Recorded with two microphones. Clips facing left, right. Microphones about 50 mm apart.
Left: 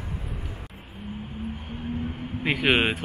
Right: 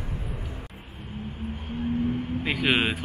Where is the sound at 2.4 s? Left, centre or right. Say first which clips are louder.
Left 3 dB; centre.